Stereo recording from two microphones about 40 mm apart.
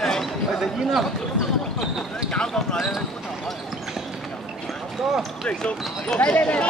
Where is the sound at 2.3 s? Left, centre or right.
Left.